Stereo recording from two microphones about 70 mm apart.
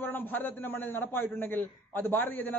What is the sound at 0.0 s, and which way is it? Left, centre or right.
A man's voice, left.